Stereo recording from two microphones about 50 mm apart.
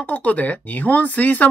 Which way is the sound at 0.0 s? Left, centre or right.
Left.